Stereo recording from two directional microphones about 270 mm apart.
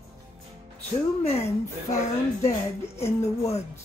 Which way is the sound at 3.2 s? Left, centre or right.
Left.